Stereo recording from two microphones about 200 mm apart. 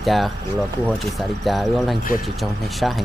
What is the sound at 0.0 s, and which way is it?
Speech, centre (ahead or behind).